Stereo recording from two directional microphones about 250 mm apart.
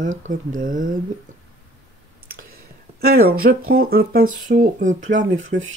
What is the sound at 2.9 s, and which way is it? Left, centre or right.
Speech, right.